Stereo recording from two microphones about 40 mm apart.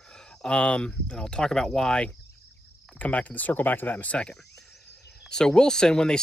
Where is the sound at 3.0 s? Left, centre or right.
Left.